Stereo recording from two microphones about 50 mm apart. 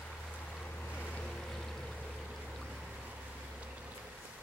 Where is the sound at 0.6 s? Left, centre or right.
Left.